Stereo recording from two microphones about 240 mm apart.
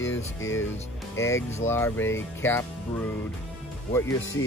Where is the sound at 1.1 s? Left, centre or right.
Centre.